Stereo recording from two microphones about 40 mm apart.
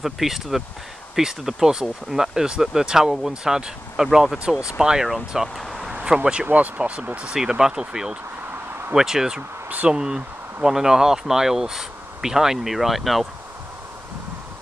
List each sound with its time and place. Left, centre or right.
0.0 s speech: centre
6.1 s speech: right
6.4 s speech: right
7.2 s speech: centre